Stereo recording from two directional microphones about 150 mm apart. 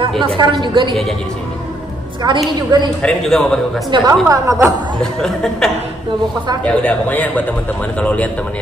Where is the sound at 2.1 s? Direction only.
30° right (ahead or behind).